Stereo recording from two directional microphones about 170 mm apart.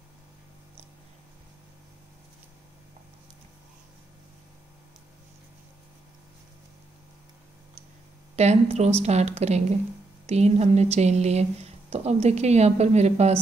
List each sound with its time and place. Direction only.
8.4 s a woman's voice: 40° right (ahead or behind)